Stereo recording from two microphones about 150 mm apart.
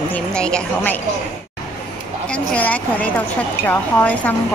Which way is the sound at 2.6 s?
10° left (ahead or behind).